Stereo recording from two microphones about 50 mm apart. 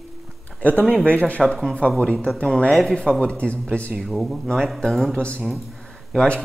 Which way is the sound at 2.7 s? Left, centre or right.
Centre.